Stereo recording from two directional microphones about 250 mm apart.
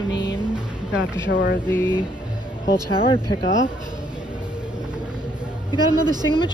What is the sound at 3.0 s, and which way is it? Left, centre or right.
Speech, left.